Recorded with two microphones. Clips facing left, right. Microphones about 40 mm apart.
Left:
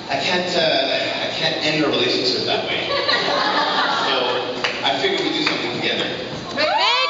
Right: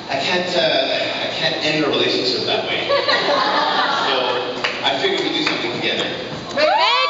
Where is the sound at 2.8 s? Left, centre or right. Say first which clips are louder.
Right 5 dB; centre.